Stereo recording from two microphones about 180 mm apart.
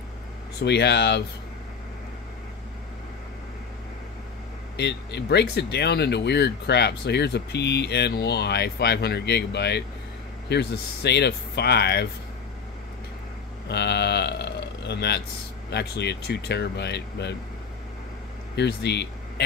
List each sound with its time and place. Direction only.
0.6 s speech: 70° left (ahead or behind)
4.7 s speech: 70° left (ahead or behind)
13.7 s speech: 70° left (ahead or behind)
18.6 s speech: 70° left (ahead or behind)